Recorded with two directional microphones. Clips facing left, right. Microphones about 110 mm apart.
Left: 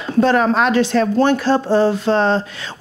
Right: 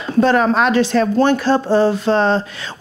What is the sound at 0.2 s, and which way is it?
Speech, 25° right (ahead or behind).